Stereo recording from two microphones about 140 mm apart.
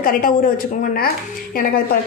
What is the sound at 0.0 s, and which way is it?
Speech, 80° left.